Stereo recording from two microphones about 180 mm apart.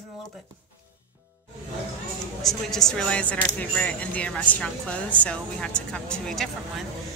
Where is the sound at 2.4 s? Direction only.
Centre (ahead or behind).